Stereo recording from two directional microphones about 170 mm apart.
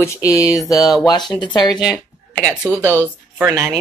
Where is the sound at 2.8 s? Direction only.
10° left (ahead or behind).